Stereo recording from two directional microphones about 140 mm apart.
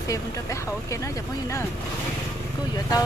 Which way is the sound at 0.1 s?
20° left (ahead or behind).